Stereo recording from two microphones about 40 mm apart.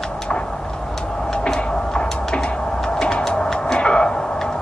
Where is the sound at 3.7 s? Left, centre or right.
Left.